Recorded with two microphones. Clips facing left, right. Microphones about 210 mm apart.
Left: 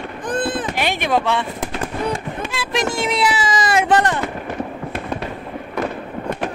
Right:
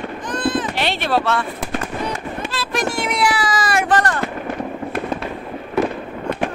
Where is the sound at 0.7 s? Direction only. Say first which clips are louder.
Even; 15° left (ahead or behind).